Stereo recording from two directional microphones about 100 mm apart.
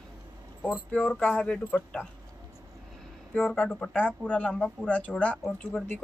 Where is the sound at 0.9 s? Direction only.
15° left (ahead or behind).